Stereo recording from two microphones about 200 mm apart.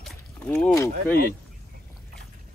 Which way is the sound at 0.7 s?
15° left (ahead or behind).